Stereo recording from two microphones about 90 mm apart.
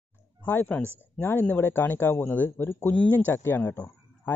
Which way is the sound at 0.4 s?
20° left (ahead or behind).